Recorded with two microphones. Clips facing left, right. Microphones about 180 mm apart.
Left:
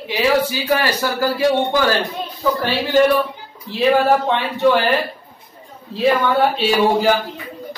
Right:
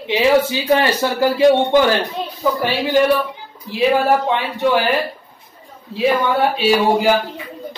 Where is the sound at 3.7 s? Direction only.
10° right (ahead or behind).